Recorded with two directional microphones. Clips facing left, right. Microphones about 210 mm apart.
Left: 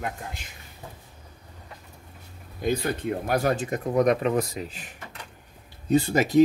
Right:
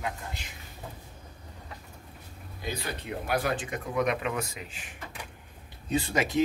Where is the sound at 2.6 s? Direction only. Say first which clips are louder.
Left 10 dB; 50° left (ahead or behind).